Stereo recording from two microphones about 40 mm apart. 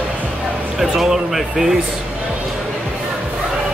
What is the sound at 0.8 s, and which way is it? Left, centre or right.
Speech, centre.